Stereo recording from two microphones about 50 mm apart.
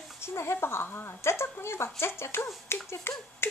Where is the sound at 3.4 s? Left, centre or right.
Left.